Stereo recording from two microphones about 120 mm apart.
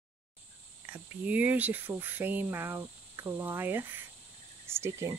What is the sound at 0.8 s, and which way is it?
Speech, 15° right (ahead or behind).